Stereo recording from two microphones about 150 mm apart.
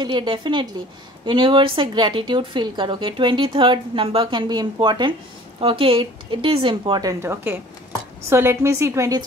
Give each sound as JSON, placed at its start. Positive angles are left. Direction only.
{"t": 0.0, "sound": "a woman's voice", "side_deg": -30}